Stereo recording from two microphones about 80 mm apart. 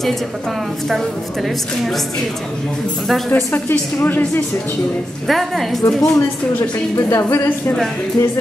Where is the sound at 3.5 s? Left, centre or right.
Left.